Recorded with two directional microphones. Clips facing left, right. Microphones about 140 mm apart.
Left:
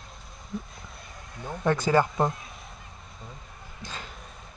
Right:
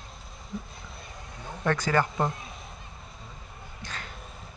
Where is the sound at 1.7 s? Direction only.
20° left (ahead or behind).